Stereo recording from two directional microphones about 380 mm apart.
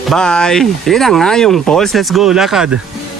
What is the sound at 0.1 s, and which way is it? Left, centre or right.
Speech, centre.